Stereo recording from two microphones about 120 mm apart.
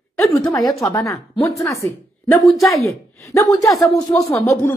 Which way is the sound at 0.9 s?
25° left (ahead or behind).